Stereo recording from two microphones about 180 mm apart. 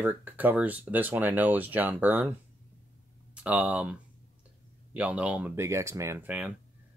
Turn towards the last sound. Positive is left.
turn(degrees=-10)  # may be behind; listen again after turning